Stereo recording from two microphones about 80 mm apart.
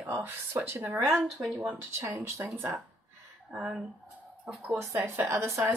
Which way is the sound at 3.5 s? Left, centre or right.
Centre.